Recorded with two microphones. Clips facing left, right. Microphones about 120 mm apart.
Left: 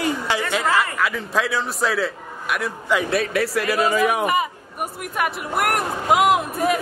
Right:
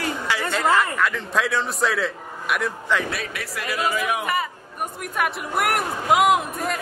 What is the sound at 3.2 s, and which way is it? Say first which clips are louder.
Speech: left 10 dB; 40° left (ahead or behind).